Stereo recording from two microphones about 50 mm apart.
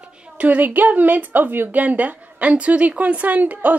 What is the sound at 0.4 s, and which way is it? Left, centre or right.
A woman's voice, right.